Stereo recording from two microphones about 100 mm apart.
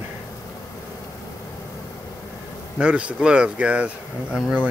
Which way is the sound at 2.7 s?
10° right (ahead or behind).